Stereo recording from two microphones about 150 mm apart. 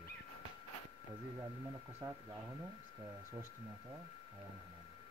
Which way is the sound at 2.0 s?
20° right (ahead or behind).